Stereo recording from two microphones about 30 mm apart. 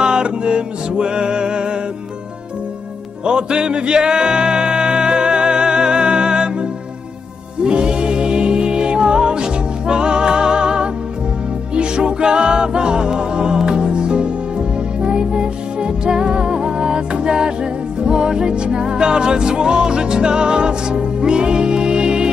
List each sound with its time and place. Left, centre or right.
0.0 s music: right
3.3 s music: right